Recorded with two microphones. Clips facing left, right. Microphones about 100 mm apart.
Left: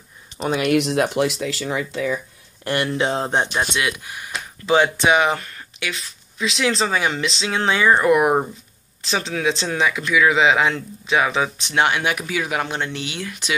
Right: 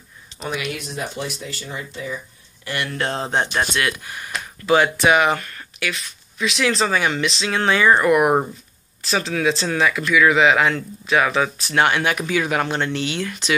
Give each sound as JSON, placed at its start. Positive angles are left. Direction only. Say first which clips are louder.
{"t": 0.4, "sound": "speech", "louder": "left 5 dB", "side_deg": 30}
{"t": 0.7, "sound": "speech", "louder": "left 10 dB", "side_deg": 85}
{"t": 2.6, "sound": "speech", "louder": "left 5 dB", "side_deg": 40}
{"t": 3.0, "sound": "speech", "louder": "left 2 dB", "side_deg": 10}